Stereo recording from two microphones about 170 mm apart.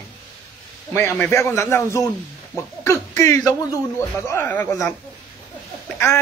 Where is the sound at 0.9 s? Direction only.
15° left (ahead or behind).